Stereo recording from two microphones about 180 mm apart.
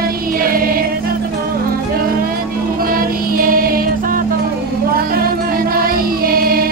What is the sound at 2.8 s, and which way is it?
Music, 55° right (ahead or behind).